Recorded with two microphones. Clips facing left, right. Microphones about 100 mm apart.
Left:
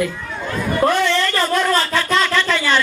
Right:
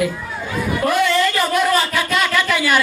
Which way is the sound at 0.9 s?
10° right (ahead or behind).